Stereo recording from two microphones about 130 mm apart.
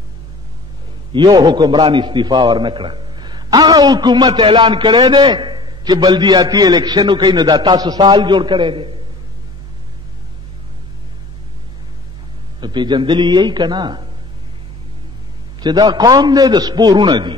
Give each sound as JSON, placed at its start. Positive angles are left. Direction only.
{"t": 1.1, "sound": "a man's voice", "side_deg": -35}
{"t": 12.5, "sound": "a man's voice", "side_deg": -35}
{"t": 15.6, "sound": "a man's voice", "side_deg": -35}